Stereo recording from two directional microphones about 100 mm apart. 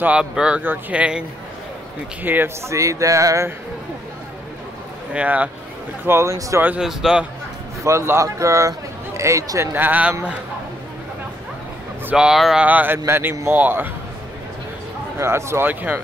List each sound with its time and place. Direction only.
0.0 s speech: 10° right (ahead or behind)
2.2 s speech: 20° right (ahead or behind)
2.7 s speech: 35° right (ahead or behind)
5.1 s speech: 15° right (ahead or behind)
6.0 s speech: 25° right (ahead or behind)
6.8 s a man's voice: 5° right (ahead or behind)
7.8 s speech: 30° right (ahead or behind)
9.8 s speech: 15° right (ahead or behind)
12.1 s speech: 10° right (ahead or behind)
12.6 s speech: 15° right (ahead or behind)
15.1 s speech: 25° right (ahead or behind)